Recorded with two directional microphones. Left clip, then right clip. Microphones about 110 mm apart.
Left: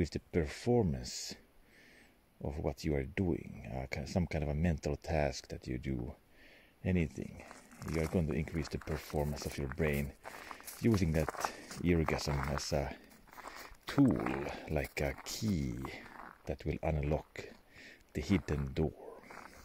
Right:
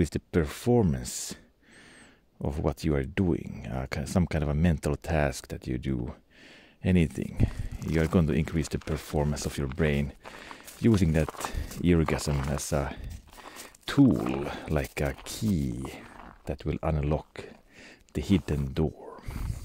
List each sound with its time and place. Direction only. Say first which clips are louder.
0.0 s speech: right 7 dB; 35° right (ahead or behind)
2.4 s speech: right 8 dB; 40° right (ahead or behind)
6.8 s speech: right 9 dB; 45° right (ahead or behind)
11.2 s speech: right 2 dB; 35° left (ahead or behind)
11.8 s speech: right 7 dB; 30° right (ahead or behind)
14.1 s speech: right 6 dB; 35° left (ahead or behind)
14.4 s speech: right 6 dB; 30° right (ahead or behind)